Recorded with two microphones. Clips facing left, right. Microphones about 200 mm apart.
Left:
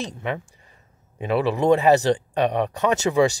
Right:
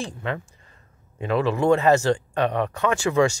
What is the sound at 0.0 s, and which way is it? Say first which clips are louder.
Speech: left 1 dB; 20° left (ahead or behind).